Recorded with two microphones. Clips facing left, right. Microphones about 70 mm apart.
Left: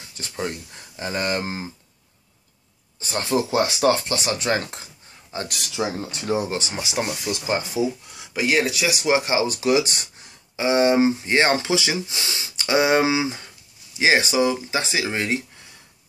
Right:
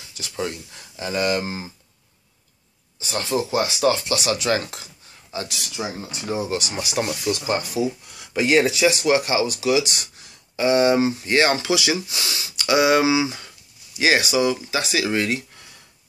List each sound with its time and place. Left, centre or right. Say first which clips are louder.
0.2 s speech: right 1 dB; left
3.0 s speech: even; left
3.3 s speech: left 2 dB; left
4.4 s speech: right 1 dB; left
5.3 s speech: even; left
5.9 s speech: left 3 dB; centre
6.8 s speech: right 1 dB; centre
8.3 s speech: right 3 dB; centre
8.9 s speech: right 1 dB; left
9.5 s speech: left 1 dB; left
10.5 s speech: right 1 dB; left